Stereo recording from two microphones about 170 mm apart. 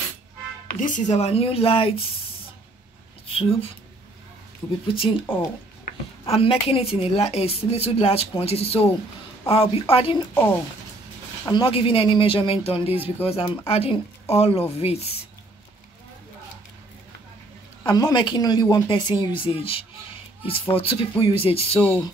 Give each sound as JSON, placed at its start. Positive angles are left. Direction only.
{"t": 0.7, "sound": "a woman's voice", "side_deg": 50}
{"t": 3.3, "sound": "a sound", "side_deg": 35}
{"t": 4.8, "sound": "a woman's voice", "side_deg": 30}
{"t": 6.2, "sound": "a woman's voice", "side_deg": 35}
{"t": 10.3, "sound": "speech", "side_deg": 10}
{"t": 11.4, "sound": "a woman's voice", "side_deg": 30}
{"t": 17.8, "sound": "a woman's voice", "side_deg": 25}